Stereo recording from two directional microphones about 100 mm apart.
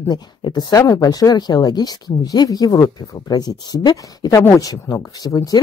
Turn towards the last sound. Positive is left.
turn(degrees=35)  # may be behind; listen again after turning